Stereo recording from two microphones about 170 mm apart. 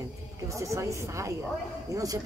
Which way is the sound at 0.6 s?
15° right (ahead or behind).